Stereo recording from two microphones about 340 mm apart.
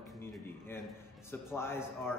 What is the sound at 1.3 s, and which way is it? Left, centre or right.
Speech, centre.